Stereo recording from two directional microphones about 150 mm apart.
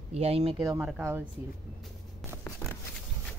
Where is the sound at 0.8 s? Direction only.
10° right (ahead or behind).